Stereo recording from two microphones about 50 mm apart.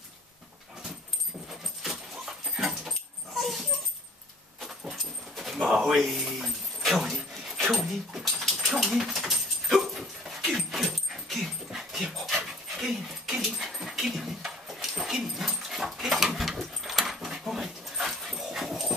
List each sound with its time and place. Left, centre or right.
1.5 s dog: centre
4.6 s keys jangling: centre
5.3 s pigeon: centre
5.7 s dog: centre